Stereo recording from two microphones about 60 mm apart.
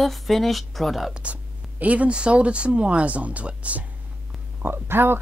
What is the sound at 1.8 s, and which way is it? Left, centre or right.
Speech, right.